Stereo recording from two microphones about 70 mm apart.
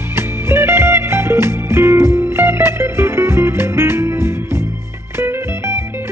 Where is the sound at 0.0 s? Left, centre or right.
Right.